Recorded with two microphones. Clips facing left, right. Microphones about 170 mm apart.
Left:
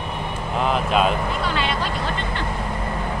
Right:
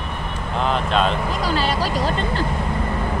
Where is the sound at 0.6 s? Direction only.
5° left (ahead or behind).